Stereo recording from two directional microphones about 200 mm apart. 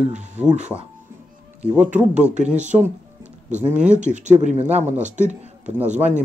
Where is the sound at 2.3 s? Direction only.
35° right (ahead or behind).